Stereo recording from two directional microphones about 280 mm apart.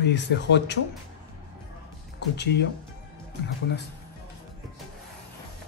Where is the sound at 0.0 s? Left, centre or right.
Left.